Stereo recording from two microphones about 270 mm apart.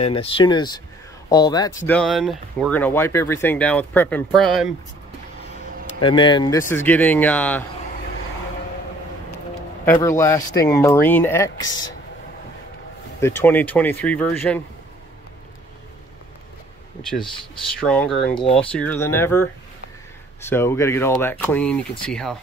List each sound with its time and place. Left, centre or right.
0.0 s speech: centre
6.0 s speech: centre
9.8 s speech: centre
13.2 s speech: centre
17.7 s speech: centre
18.3 s speech: centre
18.7 s speech: centre